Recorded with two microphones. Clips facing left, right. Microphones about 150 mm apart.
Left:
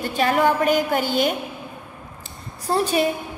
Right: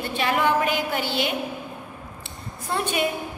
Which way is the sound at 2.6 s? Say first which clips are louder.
Left 5 dB; 35° left (ahead or behind).